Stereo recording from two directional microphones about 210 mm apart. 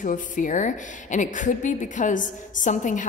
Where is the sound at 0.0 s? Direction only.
40° left (ahead or behind).